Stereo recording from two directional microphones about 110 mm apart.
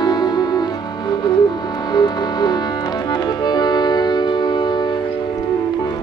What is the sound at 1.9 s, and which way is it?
Music, 40° left (ahead or behind).